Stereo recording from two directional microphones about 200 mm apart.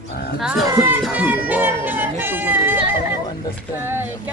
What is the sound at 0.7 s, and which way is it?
Speech, 15° right (ahead or behind).